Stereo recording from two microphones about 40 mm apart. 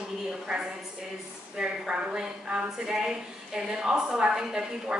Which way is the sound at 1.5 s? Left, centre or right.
Right.